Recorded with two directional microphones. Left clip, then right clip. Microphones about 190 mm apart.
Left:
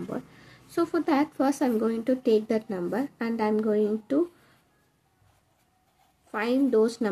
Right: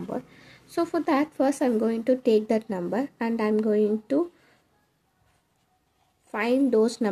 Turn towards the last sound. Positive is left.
turn(degrees=-20)  # may be behind; listen again after turning